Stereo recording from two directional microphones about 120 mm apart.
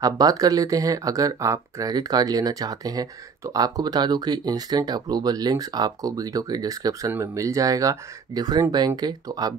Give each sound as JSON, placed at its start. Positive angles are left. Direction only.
{"t": 0.0, "sound": "speech", "side_deg": -30}